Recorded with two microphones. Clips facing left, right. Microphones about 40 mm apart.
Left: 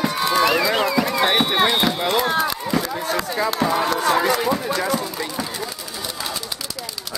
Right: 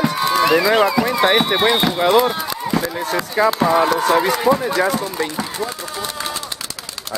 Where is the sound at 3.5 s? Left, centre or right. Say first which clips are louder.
Right 5 dB; centre.